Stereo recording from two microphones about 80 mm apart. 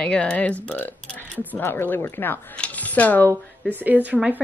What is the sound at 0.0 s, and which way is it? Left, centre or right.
Speech, centre.